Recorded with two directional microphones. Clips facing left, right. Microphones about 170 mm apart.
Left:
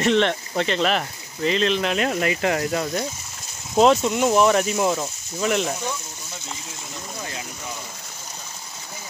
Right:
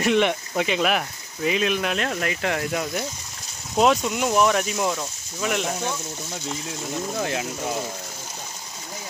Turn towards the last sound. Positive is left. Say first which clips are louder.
# right 8 dB
turn(degrees=-75)  # may be behind; listen again after turning